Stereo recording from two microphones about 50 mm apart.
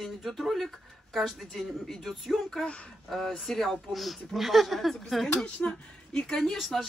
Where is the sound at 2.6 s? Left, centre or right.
Left.